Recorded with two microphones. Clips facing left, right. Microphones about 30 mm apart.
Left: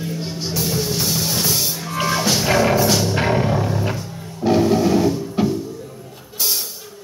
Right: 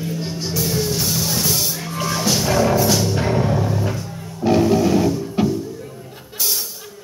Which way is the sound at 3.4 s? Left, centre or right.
Centre.